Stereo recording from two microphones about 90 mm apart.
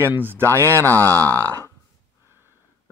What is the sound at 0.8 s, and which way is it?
Speech, 20° left (ahead or behind).